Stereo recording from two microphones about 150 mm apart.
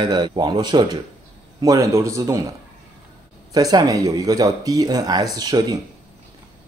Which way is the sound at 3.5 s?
25° right (ahead or behind).